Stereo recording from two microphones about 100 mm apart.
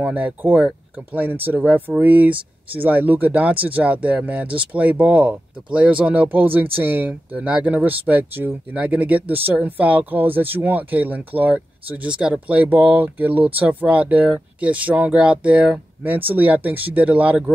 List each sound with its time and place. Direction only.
0.0 s speech: 15° right (ahead or behind)